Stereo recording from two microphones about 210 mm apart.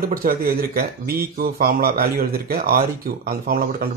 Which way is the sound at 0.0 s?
45° right (ahead or behind).